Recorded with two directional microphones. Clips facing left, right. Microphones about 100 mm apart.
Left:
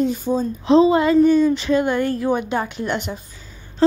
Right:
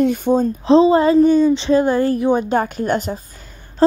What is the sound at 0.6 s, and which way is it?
Speech, 35° right (ahead or behind).